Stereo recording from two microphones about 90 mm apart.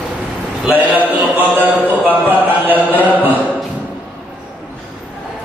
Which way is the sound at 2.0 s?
20° right (ahead or behind).